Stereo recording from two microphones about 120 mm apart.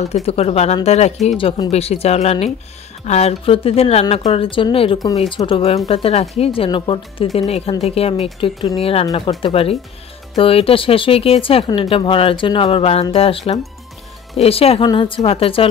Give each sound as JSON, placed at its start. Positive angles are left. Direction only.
{"t": 0.1, "sound": "speech", "side_deg": 55}
{"t": 7.3, "sound": "speech", "side_deg": 55}
{"t": 9.0, "sound": "speech", "side_deg": 35}
{"t": 9.4, "sound": "speech", "side_deg": 55}